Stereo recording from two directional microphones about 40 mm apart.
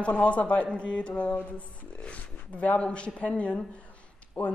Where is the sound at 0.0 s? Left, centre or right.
Left.